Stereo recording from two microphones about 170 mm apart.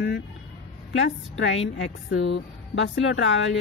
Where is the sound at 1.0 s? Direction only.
90° left.